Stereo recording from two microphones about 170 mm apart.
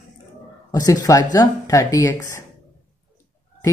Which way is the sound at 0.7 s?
20° left (ahead or behind).